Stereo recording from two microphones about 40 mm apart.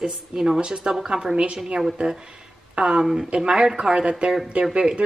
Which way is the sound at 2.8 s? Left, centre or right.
Right.